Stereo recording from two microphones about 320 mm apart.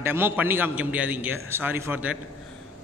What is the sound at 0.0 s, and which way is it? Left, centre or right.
A man's voice, centre.